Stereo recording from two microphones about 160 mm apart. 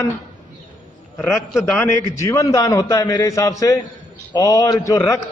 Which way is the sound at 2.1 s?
20° left (ahead or behind).